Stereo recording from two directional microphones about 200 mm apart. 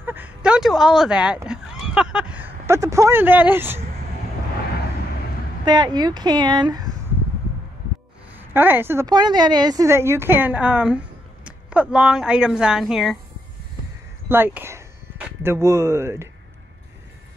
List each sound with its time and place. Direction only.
0.0 s a woman's voice: 10° right (ahead or behind)
5.7 s speech: 20° right (ahead or behind)
8.4 s a woman's voice: 10° right (ahead or behind)
14.3 s speech: 10° right (ahead or behind)